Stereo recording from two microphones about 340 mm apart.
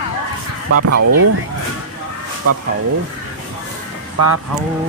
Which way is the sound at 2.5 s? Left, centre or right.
Right.